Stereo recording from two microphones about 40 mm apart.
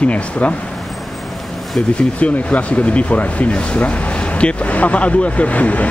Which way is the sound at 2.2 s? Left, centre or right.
Left.